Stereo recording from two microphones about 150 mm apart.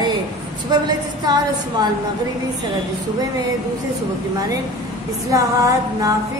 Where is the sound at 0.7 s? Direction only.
30° right (ahead or behind).